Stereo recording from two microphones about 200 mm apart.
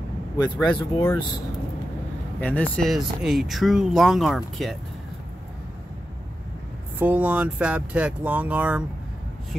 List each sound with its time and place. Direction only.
0.4 s speech: 20° left (ahead or behind)
2.4 s speech: 5° left (ahead or behind)
7.0 s speech: 10° right (ahead or behind)